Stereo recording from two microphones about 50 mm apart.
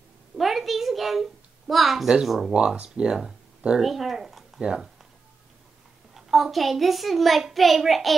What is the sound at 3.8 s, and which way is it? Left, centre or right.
Speech, centre.